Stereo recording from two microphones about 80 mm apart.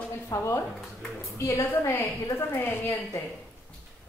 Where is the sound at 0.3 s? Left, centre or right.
Left.